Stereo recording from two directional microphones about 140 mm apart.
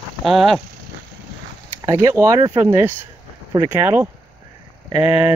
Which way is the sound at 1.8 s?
20° right (ahead or behind).